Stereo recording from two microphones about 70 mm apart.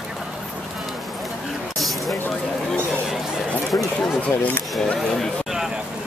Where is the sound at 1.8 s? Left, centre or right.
Centre.